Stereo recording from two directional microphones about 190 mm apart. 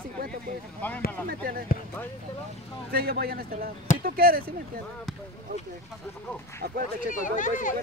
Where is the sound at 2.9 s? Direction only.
55° right (ahead or behind).